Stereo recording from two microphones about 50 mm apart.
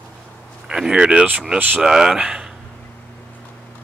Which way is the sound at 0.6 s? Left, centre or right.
Centre.